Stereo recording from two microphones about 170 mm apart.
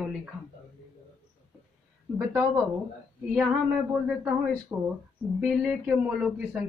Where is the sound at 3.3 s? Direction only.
5° right (ahead or behind).